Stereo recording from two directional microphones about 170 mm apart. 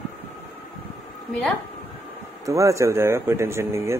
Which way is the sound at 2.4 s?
20° right (ahead or behind).